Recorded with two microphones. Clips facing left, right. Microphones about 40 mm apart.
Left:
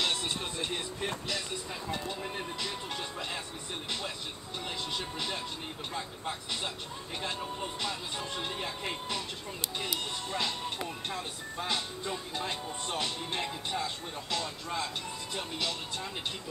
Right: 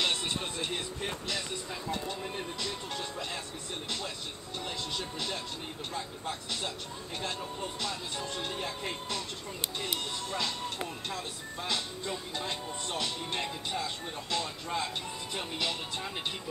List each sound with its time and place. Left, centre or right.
0.0 s music: centre
0.6 s speech: centre
4.9 s speech: centre
11.1 s speech: centre
13.4 s speech: centre
13.8 s speech: centre